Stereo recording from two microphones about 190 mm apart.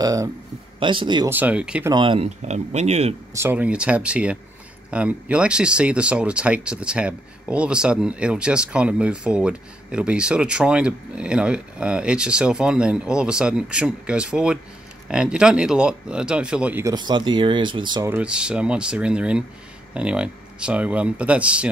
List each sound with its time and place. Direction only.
0.0 s speech: 15° right (ahead or behind)
1.3 s speech: 10° right (ahead or behind)
1.9 s speech: 25° right (ahead or behind)
3.3 s speech: 10° right (ahead or behind)
16.9 s speech: 25° right (ahead or behind)
18.1 s speech: 5° right (ahead or behind)